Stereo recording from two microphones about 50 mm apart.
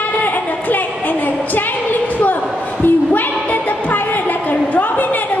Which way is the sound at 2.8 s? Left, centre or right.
Left.